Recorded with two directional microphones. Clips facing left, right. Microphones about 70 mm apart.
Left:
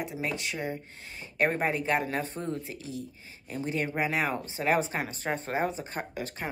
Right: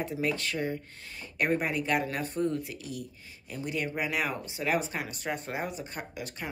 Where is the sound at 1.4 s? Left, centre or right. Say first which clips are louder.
Left 1 dB; left.